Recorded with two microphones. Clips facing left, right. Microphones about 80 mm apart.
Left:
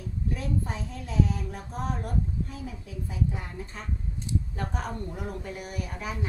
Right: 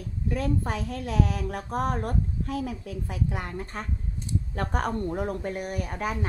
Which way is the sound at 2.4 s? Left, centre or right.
Right.